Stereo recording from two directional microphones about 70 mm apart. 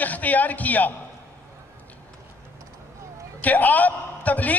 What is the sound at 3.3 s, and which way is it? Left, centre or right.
A man's voice, left.